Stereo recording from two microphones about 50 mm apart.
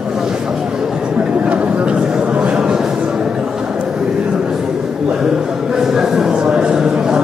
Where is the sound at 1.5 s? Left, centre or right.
Right.